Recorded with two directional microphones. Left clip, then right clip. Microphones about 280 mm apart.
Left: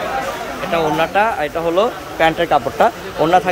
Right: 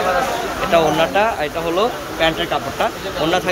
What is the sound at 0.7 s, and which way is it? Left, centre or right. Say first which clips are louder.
Speech: right 1 dB; centre.